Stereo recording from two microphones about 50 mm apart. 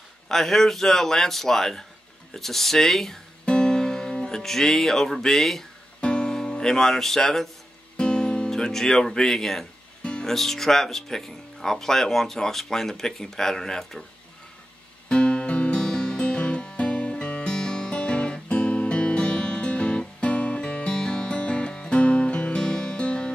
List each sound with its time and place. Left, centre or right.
0.3 s speech: centre
3.4 s music: centre
5.9 s music: left
8.0 s speech: centre
15.0 s music: centre